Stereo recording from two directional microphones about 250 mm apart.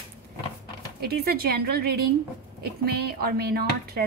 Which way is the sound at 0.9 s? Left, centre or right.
Right.